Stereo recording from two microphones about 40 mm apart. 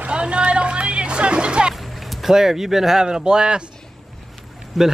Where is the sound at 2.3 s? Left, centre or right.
Centre.